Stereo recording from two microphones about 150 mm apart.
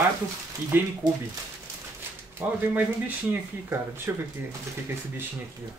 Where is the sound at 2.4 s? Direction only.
15° right (ahead or behind).